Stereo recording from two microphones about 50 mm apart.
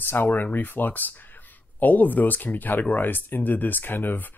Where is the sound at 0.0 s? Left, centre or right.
Left.